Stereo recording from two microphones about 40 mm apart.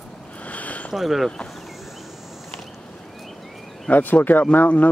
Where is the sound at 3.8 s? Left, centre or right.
Left.